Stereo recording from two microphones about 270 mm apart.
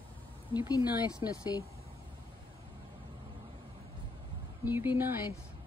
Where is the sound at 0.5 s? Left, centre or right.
Centre.